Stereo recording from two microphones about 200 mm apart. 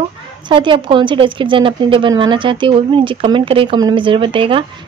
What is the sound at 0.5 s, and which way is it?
Speech, 25° right (ahead or behind).